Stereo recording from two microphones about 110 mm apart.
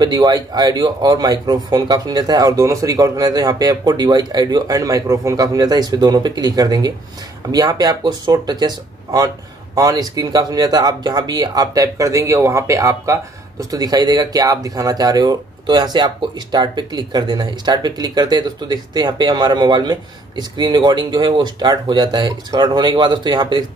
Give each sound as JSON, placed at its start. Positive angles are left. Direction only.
{"t": 0.0, "sound": "speech", "side_deg": -40}